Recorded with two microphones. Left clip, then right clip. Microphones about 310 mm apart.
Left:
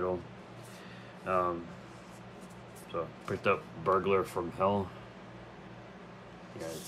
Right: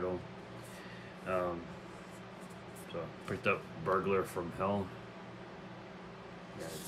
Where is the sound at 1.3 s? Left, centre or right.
Centre.